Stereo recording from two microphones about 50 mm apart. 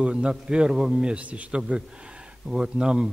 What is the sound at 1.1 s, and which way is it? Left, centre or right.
Speech, right.